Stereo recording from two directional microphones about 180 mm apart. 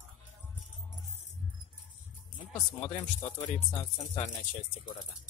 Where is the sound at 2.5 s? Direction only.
30° left (ahead or behind).